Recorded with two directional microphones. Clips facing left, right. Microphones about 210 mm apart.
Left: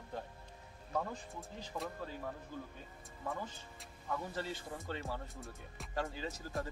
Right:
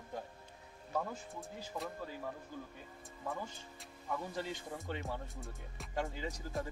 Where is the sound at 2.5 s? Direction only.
15° right (ahead or behind).